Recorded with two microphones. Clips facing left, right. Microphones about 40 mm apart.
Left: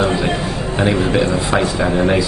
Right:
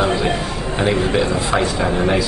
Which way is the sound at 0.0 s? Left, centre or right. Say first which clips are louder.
Left 1 dB; centre.